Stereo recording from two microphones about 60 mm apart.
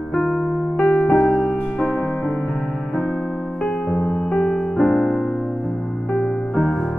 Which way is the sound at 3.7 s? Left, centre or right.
Centre.